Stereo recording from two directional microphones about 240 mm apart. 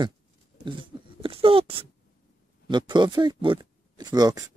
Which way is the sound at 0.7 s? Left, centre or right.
Right.